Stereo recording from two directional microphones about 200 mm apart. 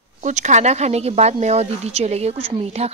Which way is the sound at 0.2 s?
35° right (ahead or behind).